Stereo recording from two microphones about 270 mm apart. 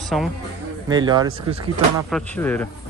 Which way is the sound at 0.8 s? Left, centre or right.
Centre.